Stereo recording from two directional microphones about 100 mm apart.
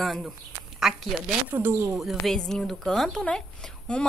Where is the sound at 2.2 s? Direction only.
5° left (ahead or behind).